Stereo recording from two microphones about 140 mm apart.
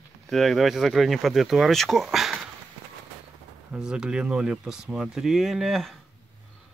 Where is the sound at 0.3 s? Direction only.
Centre (ahead or behind).